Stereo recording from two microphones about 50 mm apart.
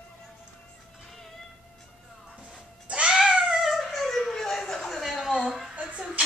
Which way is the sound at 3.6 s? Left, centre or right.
Centre.